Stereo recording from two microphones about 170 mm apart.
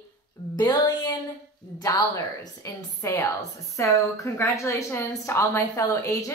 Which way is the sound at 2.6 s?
20° left (ahead or behind).